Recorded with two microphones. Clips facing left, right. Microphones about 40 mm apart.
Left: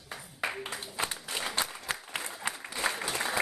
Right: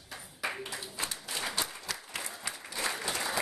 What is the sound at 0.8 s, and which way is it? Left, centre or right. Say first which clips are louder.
Speech: left 4 dB; left.